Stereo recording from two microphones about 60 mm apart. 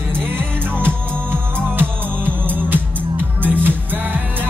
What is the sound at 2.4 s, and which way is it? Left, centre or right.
Music, right.